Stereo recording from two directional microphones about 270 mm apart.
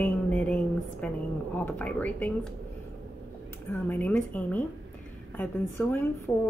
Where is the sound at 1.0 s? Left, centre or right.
Centre.